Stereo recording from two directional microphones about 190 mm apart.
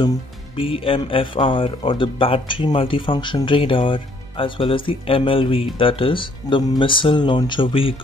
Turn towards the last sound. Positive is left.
turn(degrees=25)  # may be behind; listen again after turning